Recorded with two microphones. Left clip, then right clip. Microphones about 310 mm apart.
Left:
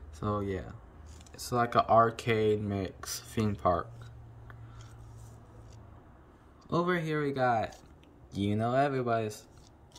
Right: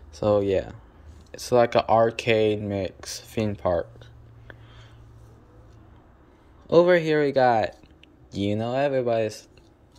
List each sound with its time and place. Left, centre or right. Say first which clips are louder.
0.1 s speech: right 13 dB; centre
6.7 s speech: right 13 dB; centre